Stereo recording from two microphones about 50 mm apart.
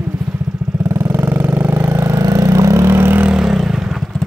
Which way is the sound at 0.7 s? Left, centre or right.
Right.